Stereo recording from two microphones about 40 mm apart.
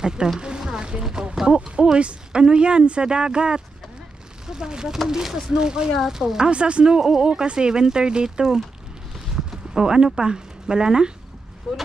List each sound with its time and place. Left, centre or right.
0.0 s speech: centre
0.4 s a sound: right
1.0 s speech: centre
2.0 s speech: right
11.7 s speech: centre